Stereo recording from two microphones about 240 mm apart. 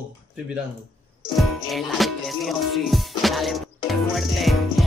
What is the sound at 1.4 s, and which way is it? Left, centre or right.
Music, centre.